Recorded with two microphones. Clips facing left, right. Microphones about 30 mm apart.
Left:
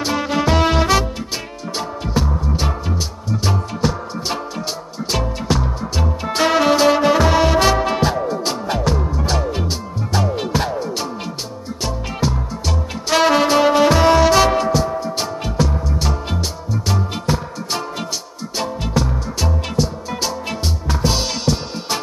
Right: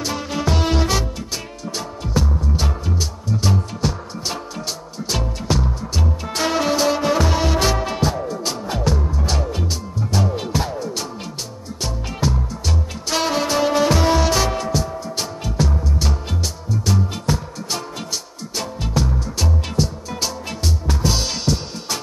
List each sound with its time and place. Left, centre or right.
0.2 s music: left
3.8 s music: centre
5.5 s music: centre
5.9 s music: centre
8.7 s music: centre
10.3 s music: centre
11.8 s music: centre
13.2 s music: left
14.1 s music: centre
14.8 s music: left
15.5 s music: centre
17.3 s music: centre
18.9 s music: centre
20.9 s music: centre